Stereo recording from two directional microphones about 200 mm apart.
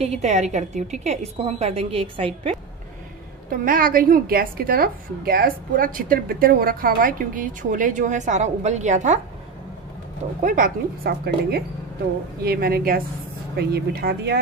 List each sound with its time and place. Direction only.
0.0 s a woman's voice: 35° right (ahead or behind)
3.4 s a woman's voice: 45° right (ahead or behind)
10.4 s a woman's voice: 45° right (ahead or behind)